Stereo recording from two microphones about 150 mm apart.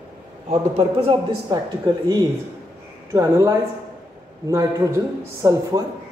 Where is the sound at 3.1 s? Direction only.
20° right (ahead or behind).